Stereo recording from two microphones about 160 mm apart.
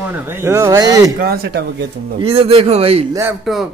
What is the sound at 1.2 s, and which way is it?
Speech, 75° right (ahead or behind).